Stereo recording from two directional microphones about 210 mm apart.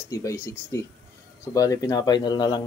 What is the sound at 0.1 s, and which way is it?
Speech, 15° left (ahead or behind).